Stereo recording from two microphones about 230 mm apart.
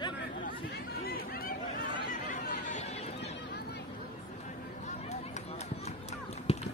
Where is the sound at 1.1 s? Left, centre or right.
Left.